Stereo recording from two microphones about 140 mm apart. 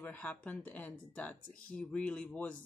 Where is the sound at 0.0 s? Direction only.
10° left (ahead or behind).